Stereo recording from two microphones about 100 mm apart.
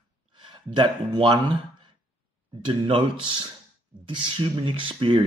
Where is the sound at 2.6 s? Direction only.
60° right (ahead or behind).